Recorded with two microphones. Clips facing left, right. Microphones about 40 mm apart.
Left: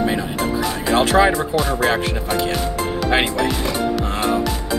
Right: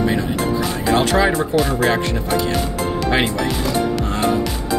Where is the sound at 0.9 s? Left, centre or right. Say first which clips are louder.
Left 2 dB; centre.